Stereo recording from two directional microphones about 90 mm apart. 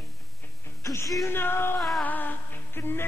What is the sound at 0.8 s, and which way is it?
Music, 40° left (ahead or behind).